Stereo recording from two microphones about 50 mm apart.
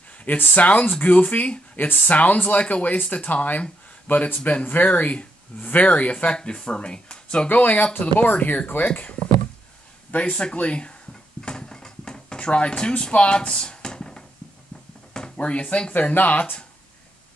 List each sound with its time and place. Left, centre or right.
0.2 s speech: left; by 7.4 s centre
7.4 s speech: left
11.4 s a sound: centre
15.1 s speech: left
15.9 s speech: left